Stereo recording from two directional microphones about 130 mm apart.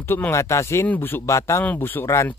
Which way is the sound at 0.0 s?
20° left (ahead or behind).